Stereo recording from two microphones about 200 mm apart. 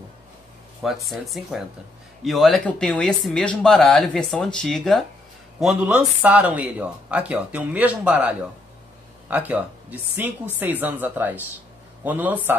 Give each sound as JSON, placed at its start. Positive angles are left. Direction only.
{"t": 1.1, "sound": "speech", "side_deg": 0}